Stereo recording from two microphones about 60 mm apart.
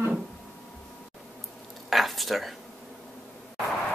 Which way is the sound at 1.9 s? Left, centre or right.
Centre.